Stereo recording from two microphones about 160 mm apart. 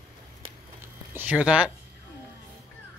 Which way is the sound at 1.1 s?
10° right (ahead or behind).